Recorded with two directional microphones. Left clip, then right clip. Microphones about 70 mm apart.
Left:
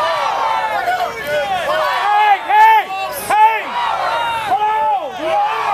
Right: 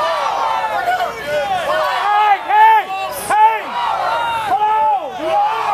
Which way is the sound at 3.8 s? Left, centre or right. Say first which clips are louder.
Even; left.